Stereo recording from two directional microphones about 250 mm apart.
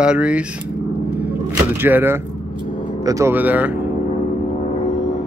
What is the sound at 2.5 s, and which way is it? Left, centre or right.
Vehicle, centre.